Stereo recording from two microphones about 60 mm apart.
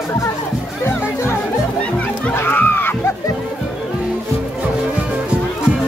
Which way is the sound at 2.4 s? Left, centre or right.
Left.